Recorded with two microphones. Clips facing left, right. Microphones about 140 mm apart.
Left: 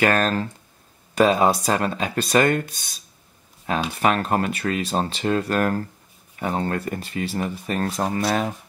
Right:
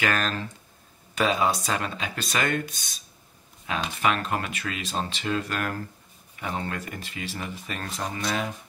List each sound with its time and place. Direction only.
0.0 s speech: 45° left (ahead or behind)